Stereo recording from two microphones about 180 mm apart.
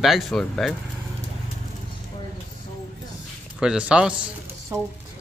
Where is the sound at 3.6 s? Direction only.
5° right (ahead or behind).